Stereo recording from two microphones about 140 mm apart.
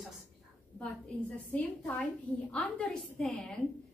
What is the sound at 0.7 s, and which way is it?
A woman's voice, 10° left (ahead or behind).